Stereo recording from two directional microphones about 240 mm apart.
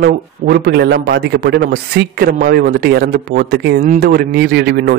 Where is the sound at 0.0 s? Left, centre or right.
Right.